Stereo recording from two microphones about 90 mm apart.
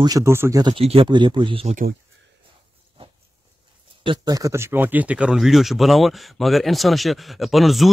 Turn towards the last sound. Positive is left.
turn(degrees=0)  # may be behind; listen again after turning